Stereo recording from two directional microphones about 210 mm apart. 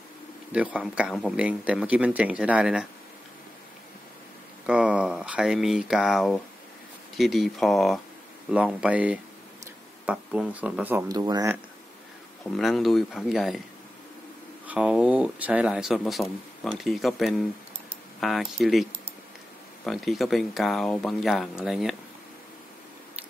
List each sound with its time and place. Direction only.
0.5 s speech: 5° right (ahead or behind)
4.6 s speech: 5° right (ahead or behind)
12.5 s speech: centre (ahead or behind)
14.7 s speech: 5° right (ahead or behind)